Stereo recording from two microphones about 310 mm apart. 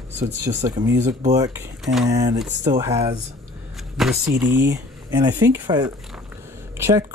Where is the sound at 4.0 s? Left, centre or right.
Centre.